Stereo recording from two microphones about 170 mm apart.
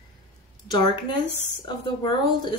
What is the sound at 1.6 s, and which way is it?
Speech, 30° left (ahead or behind).